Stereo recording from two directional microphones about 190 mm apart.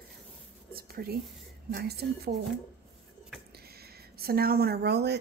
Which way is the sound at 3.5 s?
55° right (ahead or behind).